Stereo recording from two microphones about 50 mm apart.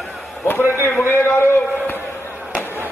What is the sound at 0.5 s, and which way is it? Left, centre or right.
A man's voice, left.